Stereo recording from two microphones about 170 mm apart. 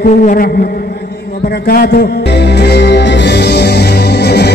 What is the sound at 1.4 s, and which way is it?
Music, 65° left (ahead or behind).